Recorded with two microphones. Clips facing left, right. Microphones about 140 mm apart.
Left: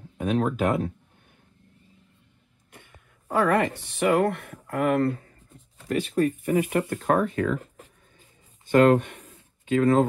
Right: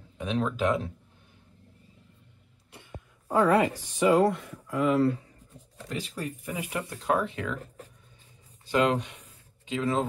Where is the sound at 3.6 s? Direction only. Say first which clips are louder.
Even; 10° right (ahead or behind).